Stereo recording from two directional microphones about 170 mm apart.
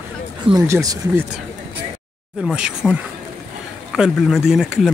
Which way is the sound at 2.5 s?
5° right (ahead or behind).